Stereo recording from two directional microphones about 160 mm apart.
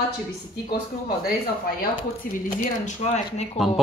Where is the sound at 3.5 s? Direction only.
Centre (ahead or behind).